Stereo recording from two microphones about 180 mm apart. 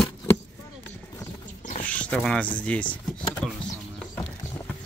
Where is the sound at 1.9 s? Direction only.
5° left (ahead or behind).